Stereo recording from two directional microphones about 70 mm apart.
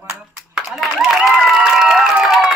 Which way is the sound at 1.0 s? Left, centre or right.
Centre.